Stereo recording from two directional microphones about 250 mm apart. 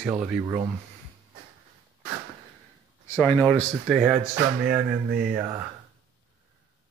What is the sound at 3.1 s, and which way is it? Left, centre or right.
Speech, centre.